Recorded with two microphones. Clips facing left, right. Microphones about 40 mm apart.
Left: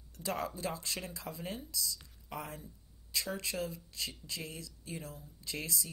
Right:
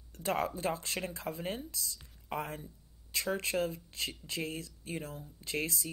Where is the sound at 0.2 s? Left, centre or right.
Right.